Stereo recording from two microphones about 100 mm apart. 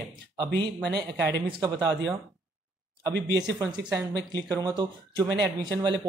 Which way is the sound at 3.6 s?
45° right (ahead or behind).